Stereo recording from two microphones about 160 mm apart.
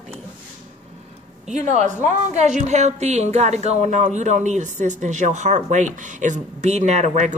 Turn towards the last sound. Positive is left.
turn(degrees=-45)  # may be behind; listen again after turning